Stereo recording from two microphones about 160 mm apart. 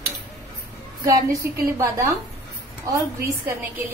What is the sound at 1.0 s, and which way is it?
A woman's voice, 20° right (ahead or behind).